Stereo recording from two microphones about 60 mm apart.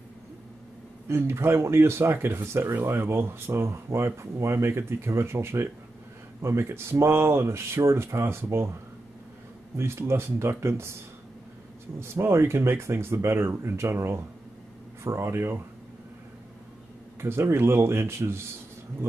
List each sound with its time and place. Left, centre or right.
1.0 s speech: right
9.8 s speech: right
12.0 s speech: right
17.2 s speech: right